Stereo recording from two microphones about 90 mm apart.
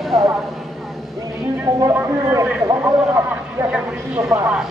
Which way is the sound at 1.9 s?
30° right (ahead or behind).